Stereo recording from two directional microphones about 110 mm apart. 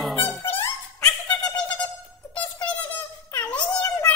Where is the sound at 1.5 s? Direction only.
10° left (ahead or behind).